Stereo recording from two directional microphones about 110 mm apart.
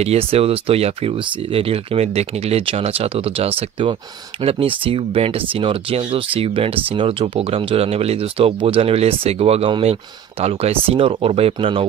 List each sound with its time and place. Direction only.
0.0 s speech: 65° right (ahead or behind)